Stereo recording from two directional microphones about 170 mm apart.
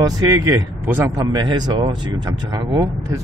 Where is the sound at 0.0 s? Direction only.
20° right (ahead or behind).